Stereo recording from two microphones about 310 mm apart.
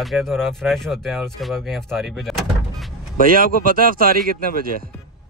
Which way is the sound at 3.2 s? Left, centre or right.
Right.